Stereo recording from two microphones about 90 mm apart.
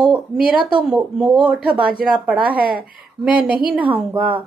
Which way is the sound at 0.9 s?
5° right (ahead or behind).